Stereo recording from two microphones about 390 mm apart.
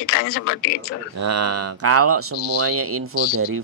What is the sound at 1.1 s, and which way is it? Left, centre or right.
Speech, right.